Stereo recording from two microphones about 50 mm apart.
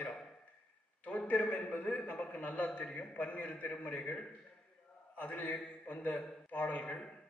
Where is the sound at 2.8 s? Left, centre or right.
Left.